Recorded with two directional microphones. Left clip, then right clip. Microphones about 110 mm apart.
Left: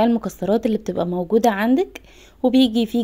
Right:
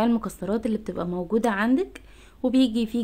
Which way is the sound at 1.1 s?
30° left (ahead or behind).